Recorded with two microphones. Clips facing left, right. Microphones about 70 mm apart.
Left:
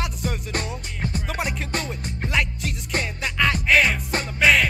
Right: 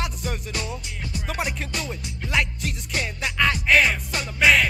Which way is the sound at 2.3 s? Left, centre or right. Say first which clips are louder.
Right 1 dB; centre.